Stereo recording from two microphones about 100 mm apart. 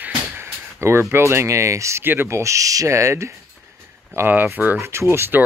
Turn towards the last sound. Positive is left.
turn(degrees=-25)  # may be behind; listen again after turning